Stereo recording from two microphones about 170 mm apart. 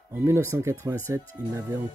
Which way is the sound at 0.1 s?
15° right (ahead or behind).